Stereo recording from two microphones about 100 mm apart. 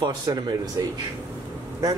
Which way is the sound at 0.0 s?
40° right (ahead or behind).